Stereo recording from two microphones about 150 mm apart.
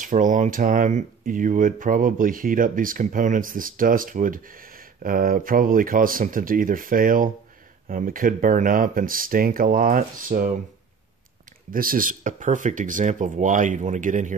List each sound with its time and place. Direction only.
0.0 s speech: 60° right (ahead or behind)
11.7 s speech: 70° right (ahead or behind)